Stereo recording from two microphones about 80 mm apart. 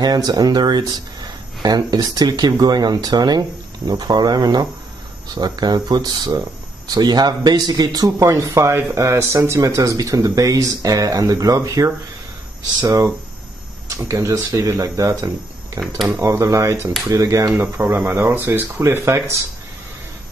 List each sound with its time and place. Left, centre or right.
0.0 s speech: right
17.6 s speech: right